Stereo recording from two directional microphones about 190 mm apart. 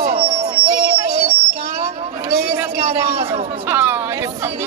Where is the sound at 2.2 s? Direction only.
50° right (ahead or behind).